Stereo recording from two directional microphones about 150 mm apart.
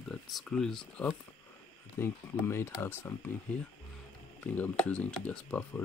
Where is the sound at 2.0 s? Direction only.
15° left (ahead or behind).